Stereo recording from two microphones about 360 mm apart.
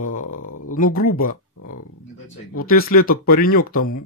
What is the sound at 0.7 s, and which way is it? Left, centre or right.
Speech, left.